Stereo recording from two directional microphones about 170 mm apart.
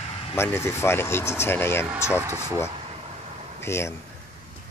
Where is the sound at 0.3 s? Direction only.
15° left (ahead or behind).